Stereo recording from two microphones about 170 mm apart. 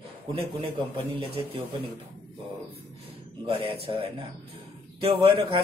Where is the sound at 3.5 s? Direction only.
35° right (ahead or behind).